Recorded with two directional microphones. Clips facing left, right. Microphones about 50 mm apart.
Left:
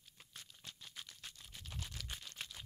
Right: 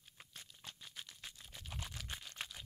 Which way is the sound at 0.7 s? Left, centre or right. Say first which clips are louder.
Right 1 dB; centre.